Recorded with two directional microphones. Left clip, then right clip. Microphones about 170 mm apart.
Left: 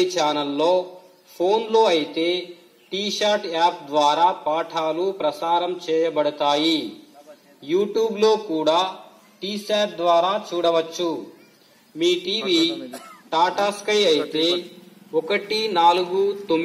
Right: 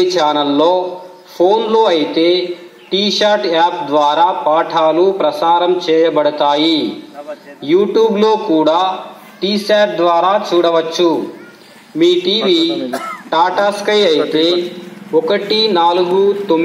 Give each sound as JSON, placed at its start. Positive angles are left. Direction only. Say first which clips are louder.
{"t": 0.0, "sound": "a man's voice", "louder": "right 8 dB", "side_deg": 15}